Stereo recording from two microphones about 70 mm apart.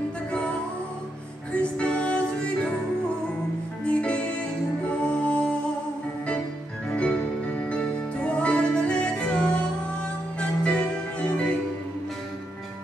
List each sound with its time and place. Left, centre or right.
1.5 s music: centre
3.8 s music: centre
6.9 s music: centre